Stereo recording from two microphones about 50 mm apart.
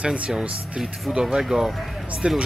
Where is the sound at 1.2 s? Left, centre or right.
Centre.